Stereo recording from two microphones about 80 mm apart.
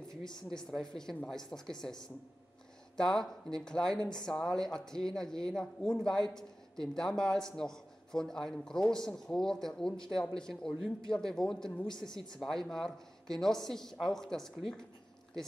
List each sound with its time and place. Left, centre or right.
0.1 s speech: centre
3.0 s speech: centre